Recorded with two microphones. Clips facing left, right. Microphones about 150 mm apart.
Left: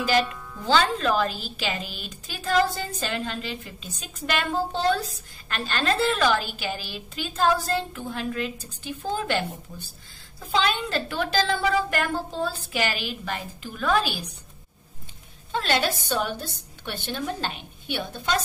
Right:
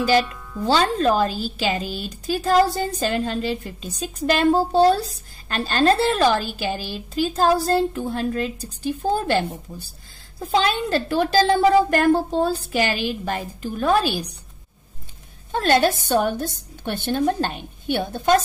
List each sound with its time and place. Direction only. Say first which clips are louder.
0.2 s speech: even; centre (ahead or behind)
0.7 s a woman's voice: right 4 dB; 40° right (ahead or behind)
15.5 s a woman's voice: right 7 dB; 45° right (ahead or behind)